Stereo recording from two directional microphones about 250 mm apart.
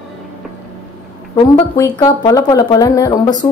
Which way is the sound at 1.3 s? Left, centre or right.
Centre.